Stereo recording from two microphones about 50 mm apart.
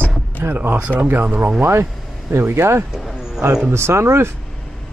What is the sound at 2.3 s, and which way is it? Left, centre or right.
Speech, right.